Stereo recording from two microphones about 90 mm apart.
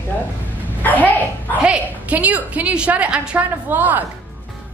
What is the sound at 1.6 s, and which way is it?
A woman's voice, 15° right (ahead or behind).